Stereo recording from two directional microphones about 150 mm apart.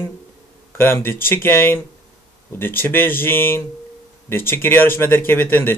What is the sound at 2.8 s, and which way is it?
Speech, 15° left (ahead or behind).